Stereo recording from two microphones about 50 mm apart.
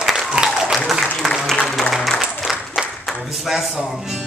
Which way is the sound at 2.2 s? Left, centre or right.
Centre.